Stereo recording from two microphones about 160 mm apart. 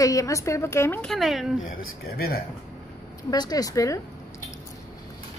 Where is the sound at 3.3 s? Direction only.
25° left (ahead or behind).